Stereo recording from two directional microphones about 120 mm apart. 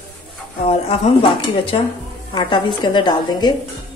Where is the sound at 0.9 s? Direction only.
50° left (ahead or behind).